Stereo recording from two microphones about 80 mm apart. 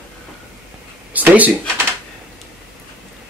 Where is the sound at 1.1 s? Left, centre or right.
Centre.